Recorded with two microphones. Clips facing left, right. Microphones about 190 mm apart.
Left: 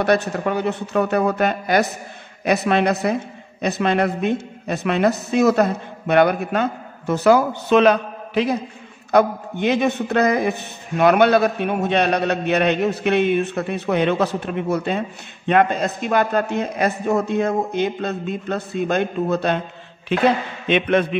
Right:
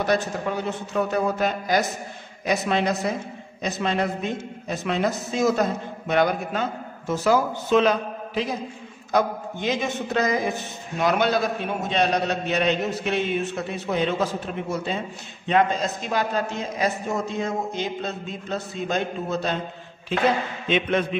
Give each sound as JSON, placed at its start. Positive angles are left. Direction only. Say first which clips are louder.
{"t": 0.0, "sound": "a man's voice", "louder": "left 5 dB", "side_deg": 65}
{"t": 20.6, "sound": "a man's voice", "louder": "left 5 dB", "side_deg": 65}